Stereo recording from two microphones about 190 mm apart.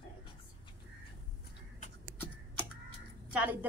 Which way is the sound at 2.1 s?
10° left (ahead or behind).